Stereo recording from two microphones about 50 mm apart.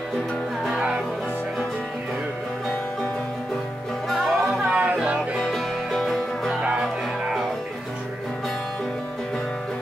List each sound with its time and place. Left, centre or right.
4.1 s music: centre
4.6 s music: right
5.5 s music: centre